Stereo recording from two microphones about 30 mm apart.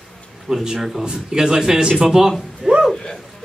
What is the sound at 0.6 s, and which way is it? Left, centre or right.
Speech, centre.